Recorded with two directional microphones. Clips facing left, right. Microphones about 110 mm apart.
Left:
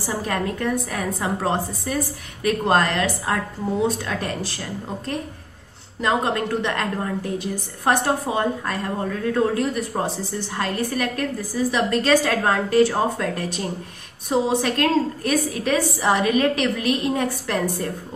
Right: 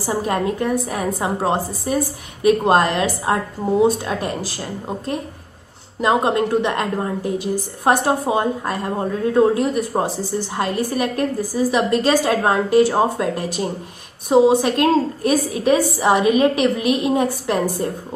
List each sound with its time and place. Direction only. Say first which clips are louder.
0.1 s a woman's voice: right 5 dB; 20° right (ahead or behind)
14.6 s a woman's voice: right 4 dB; 20° right (ahead or behind)